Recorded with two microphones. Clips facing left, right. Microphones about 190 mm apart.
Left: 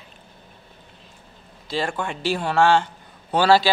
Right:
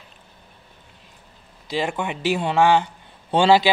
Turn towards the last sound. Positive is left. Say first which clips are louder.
# right 1 dB
turn(degrees=-20)  # may be behind; listen again after turning